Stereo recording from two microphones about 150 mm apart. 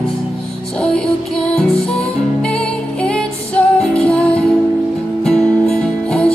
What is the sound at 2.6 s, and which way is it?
Music, 5° left (ahead or behind).